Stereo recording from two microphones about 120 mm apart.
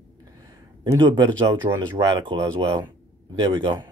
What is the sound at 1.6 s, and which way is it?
A man's voice, 50° right (ahead or behind).